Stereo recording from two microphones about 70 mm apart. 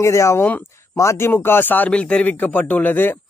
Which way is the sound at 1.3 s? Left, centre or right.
Left.